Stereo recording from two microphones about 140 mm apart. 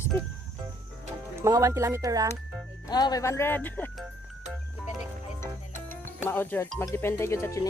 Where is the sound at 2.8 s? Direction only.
30° left (ahead or behind); by 3.9 s 15° left (ahead or behind).